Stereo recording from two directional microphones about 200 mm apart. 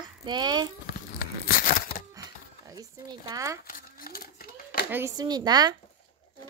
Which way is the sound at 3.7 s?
45° left (ahead or behind).